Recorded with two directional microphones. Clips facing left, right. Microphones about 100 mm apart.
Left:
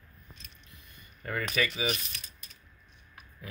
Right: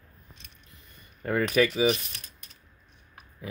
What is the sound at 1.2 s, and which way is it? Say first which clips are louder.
Speech: right 8 dB; 35° right (ahead or behind).